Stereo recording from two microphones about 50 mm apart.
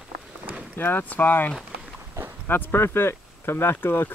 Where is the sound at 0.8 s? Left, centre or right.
Left.